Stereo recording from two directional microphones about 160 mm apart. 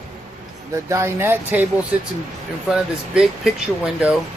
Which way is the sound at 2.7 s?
5° right (ahead or behind).